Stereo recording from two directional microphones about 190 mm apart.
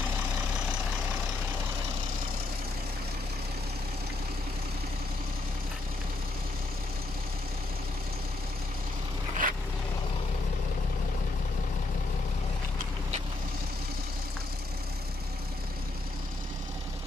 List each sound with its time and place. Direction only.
9.4 s vehicle: 45° right (ahead or behind)